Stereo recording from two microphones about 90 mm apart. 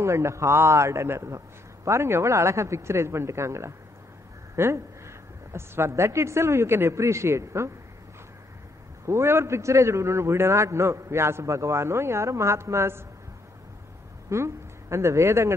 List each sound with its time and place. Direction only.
0.0 s a man's voice: 30° right (ahead or behind)
9.0 s a man's voice: 30° right (ahead or behind)
14.3 s a woman's voice: 30° right (ahead or behind)